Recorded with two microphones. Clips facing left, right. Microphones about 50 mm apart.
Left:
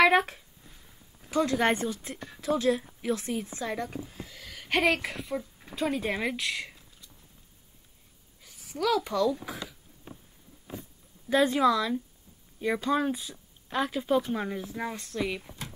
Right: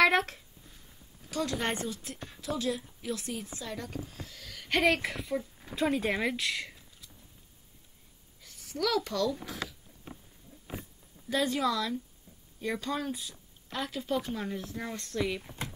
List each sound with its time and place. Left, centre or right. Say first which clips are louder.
0.0 s a sound: left 3 dB; centre
1.3 s a woman's voice: left 7 dB; left
4.1 s speech: left 2 dB; centre
8.4 s speech: left 1 dB; centre
11.2 s a woman's voice: left 6 dB; left
12.7 s a woman's voice: left 8 dB; left; by 15.4 s centre